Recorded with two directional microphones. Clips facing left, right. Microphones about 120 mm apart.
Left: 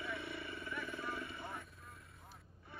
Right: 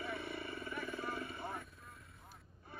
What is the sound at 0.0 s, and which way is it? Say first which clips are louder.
Vehicle: right 2 dB; 45° right (ahead or behind).